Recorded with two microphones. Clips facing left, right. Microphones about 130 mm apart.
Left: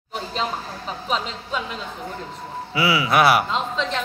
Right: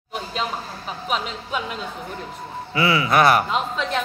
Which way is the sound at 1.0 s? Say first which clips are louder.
Even; 10° right (ahead or behind).